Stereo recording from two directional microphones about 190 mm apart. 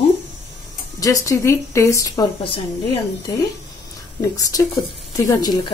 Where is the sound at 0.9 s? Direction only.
15° left (ahead or behind).